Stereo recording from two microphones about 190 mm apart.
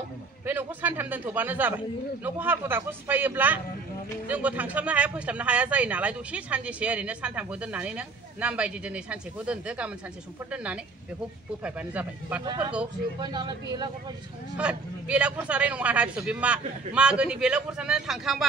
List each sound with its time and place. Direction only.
0.5 s speech: 10° right (ahead or behind)
13.2 s speech: 25° right (ahead or behind)
14.6 s a man's voice: 5° right (ahead or behind)